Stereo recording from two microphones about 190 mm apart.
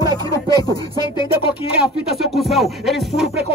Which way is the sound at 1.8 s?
Centre (ahead or behind).